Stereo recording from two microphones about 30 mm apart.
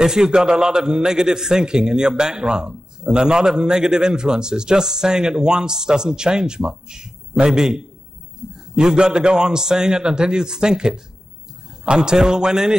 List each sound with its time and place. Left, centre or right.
0.0 s a man's voice: right
8.4 s a sound: right
8.7 s a man's voice: right